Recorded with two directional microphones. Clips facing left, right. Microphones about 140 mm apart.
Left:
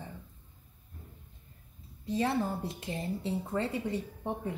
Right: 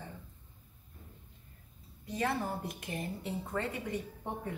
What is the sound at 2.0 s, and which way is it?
Speech, 25° left (ahead or behind).